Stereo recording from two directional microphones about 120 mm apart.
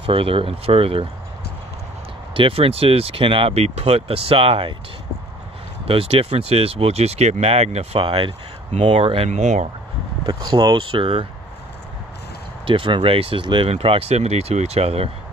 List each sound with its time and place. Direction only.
0.0 s speech: 50° right (ahead or behind)
2.3 s speech: 50° right (ahead or behind)
5.9 s speech: 50° right (ahead or behind)
9.3 s speech: 85° right
10.2 s speech: 40° right (ahead or behind)
12.6 s speech: 45° right (ahead or behind)